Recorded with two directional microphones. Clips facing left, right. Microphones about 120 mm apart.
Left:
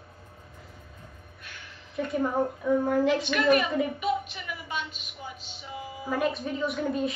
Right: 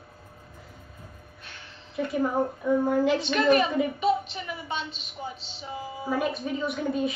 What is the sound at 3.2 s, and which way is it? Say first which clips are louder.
A woman's voice: right 2 dB; 30° right (ahead or behind).